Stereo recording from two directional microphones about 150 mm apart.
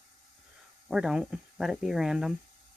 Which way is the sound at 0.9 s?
5° right (ahead or behind).